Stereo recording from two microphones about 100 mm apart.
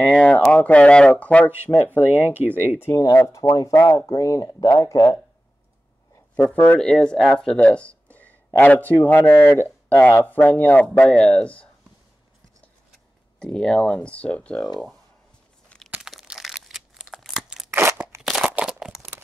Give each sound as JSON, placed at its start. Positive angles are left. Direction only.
{"t": 0.0, "sound": "speech", "side_deg": 10}
{"t": 1.5, "sound": "speech", "side_deg": -20}
{"t": 2.8, "sound": "speech", "side_deg": 30}
{"t": 6.8, "sound": "speech", "side_deg": 5}
{"t": 8.1, "sound": "a sound", "side_deg": 15}
{"t": 8.5, "sound": "speech", "side_deg": 20}
{"t": 13.4, "sound": "speech", "side_deg": 10}
{"t": 16.0, "sound": "crumpling", "side_deg": -5}
{"t": 17.6, "sound": "scissors", "side_deg": -20}
{"t": 18.2, "sound": "a sound", "side_deg": 0}